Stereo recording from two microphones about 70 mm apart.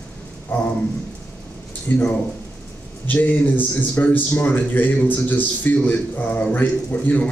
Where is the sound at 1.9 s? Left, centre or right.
Left.